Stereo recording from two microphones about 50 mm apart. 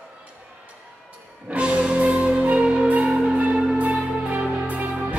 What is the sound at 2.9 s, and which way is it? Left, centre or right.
Music, right.